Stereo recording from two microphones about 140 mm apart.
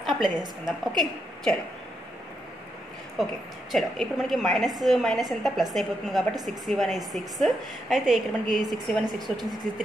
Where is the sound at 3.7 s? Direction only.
Centre (ahead or behind).